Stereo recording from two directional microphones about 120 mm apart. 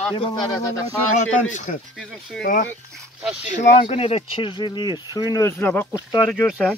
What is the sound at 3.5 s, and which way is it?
Speech, 70° left (ahead or behind).